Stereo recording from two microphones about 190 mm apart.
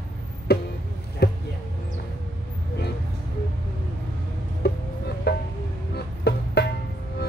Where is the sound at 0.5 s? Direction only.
60° left (ahead or behind).